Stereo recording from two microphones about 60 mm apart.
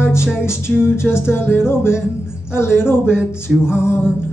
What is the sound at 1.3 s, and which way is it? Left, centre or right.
Music, left.